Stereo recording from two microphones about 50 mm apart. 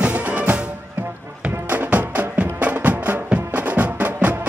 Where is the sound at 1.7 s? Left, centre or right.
Right.